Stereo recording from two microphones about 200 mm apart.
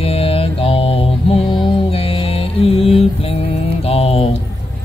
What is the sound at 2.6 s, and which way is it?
Mantra, 30° left (ahead or behind).